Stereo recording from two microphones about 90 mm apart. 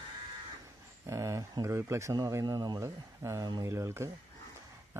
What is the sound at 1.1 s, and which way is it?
Speech, 35° right (ahead or behind).